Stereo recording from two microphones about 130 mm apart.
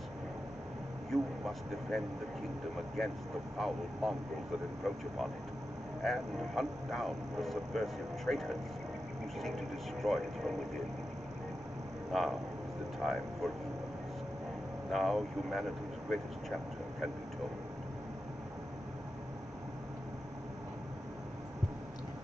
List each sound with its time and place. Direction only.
1.1 s speech: centre (ahead or behind)
6.0 s speech: centre (ahead or behind)
12.1 s speech: centre (ahead or behind)
14.9 s speech: centre (ahead or behind)